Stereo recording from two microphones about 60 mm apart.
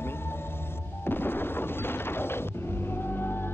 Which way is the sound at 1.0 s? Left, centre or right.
Left.